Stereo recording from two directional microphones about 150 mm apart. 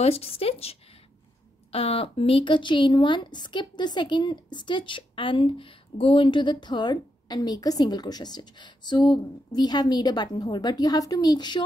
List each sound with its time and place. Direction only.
0.0 s a woman's voice: 40° left (ahead or behind)